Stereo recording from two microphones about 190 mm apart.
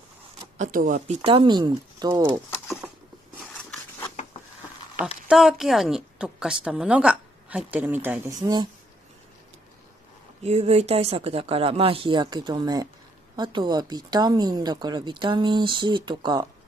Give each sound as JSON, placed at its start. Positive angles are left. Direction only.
{"t": 0.6, "sound": "a woman's voice", "side_deg": -45}
{"t": 5.0, "sound": "speech", "side_deg": -5}
{"t": 8.4, "sound": "a woman's voice", "side_deg": -20}
{"t": 10.4, "sound": "a woman's voice", "side_deg": -35}